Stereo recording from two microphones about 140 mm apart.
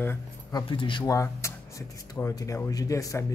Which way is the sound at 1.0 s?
20° left (ahead or behind).